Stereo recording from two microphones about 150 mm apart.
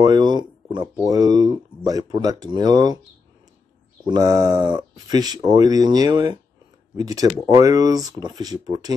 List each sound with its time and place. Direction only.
0.0 s a sound: 25° right (ahead or behind)
2.5 s speech: 25° right (ahead or behind)
4.0 s speech: 25° right (ahead or behind)